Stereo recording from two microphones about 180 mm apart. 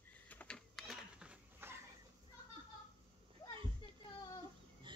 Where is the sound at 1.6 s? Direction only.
10° right (ahead or behind).